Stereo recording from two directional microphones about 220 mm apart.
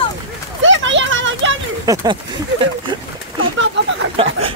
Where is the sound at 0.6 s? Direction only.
60° right (ahead or behind).